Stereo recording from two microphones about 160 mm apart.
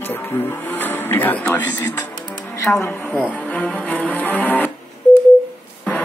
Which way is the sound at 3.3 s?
10° left (ahead or behind).